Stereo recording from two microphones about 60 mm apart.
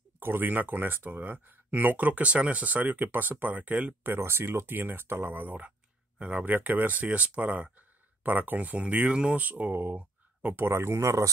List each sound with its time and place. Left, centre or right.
0.2 s speech: right
4.0 s speech: right
10.6 s speech: right